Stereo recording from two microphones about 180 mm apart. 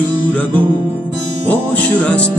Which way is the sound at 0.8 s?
10° right (ahead or behind).